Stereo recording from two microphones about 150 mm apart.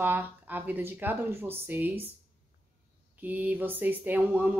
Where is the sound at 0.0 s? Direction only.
15° right (ahead or behind).